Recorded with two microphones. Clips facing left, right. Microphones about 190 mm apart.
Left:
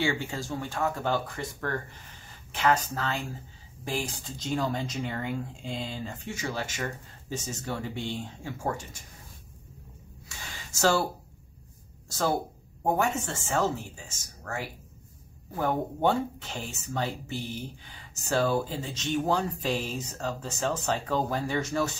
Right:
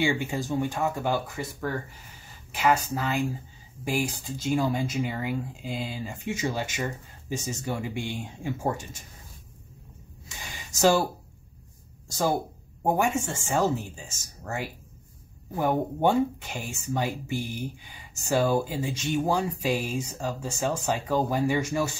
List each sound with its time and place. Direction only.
0.0 s speech: 15° right (ahead or behind)
6.2 s speech: 20° right (ahead or behind)
10.2 s a sound: 15° right (ahead or behind)
12.8 s speech: 15° right (ahead or behind)